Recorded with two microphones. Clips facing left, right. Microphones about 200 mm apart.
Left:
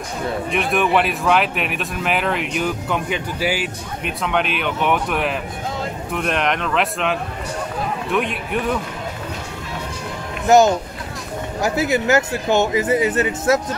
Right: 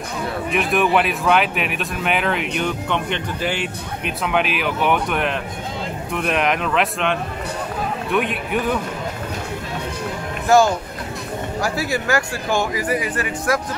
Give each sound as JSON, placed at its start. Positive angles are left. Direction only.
{"t": 0.5, "sound": "a man's voice", "side_deg": 0}
{"t": 10.5, "sound": "speech", "side_deg": 20}